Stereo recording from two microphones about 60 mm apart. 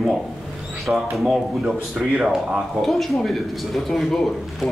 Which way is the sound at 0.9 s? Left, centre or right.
Centre.